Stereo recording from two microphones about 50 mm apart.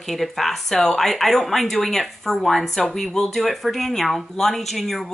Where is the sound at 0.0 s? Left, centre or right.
Centre.